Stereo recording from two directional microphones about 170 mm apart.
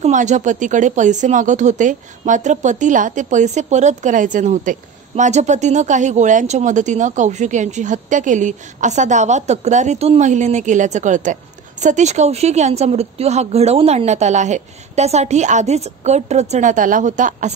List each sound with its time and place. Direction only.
0.0 s a woman's voice: 45° right (ahead or behind)